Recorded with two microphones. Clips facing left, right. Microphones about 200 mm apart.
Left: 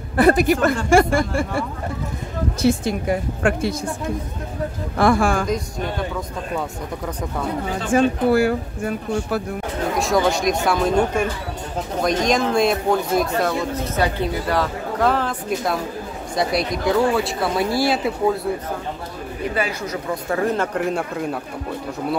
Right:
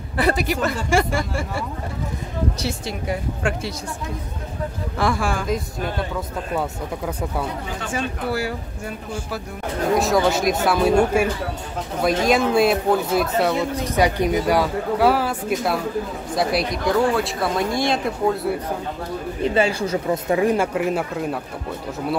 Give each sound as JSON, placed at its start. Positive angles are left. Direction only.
{"t": 0.2, "sound": "speech", "side_deg": 50}
{"t": 2.6, "sound": "speech", "side_deg": 50}
{"t": 4.9, "sound": "speech", "side_deg": 50}
{"t": 7.9, "sound": "speech", "side_deg": 50}
{"t": 9.9, "sound": "speech", "side_deg": 0}
{"t": 13.5, "sound": "speech", "side_deg": -15}
{"t": 19.4, "sound": "speech", "side_deg": -25}
{"t": 20.2, "sound": "speech", "side_deg": -15}